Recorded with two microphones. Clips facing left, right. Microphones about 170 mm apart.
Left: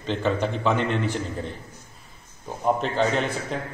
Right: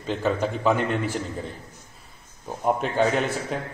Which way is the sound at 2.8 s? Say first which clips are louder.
Right 1 dB; 5° right (ahead or behind).